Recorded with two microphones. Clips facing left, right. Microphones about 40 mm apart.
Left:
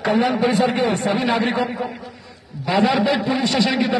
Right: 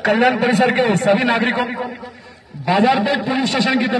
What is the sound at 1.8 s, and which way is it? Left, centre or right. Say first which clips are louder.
A man's voice: right 1 dB; centre.